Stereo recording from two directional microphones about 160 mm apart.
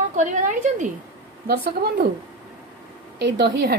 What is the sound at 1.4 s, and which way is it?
Speech, 70° right (ahead or behind).